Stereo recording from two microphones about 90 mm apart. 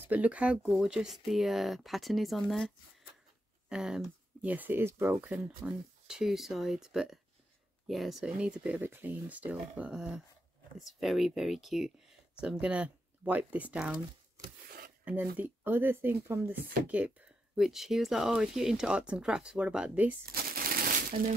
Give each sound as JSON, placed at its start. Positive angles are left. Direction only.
{"t": 0.0, "sound": "speech", "side_deg": -15}
{"t": 3.6, "sound": "a sound", "side_deg": -5}
{"t": 4.5, "sound": "speech", "side_deg": -20}
{"t": 5.6, "sound": "speech", "side_deg": -10}
{"t": 15.0, "sound": "speech", "side_deg": -20}
{"t": 17.6, "sound": "speech", "side_deg": -5}